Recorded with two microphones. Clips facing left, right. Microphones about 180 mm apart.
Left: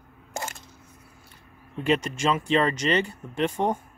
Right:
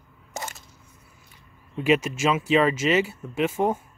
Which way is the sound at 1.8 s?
5° right (ahead or behind).